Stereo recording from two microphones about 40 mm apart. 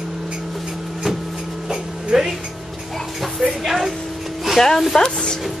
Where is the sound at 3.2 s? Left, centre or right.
Centre.